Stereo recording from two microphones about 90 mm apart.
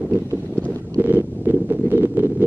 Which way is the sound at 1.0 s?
20° right (ahead or behind).